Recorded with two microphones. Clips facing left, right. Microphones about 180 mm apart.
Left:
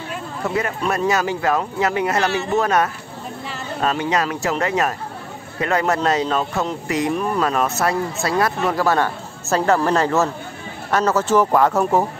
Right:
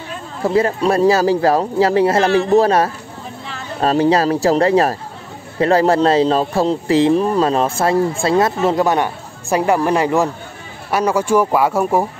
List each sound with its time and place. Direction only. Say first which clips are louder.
0.4 s speech: right 8 dB; 30° right (ahead or behind); by 12.1 s 10° right (ahead or behind)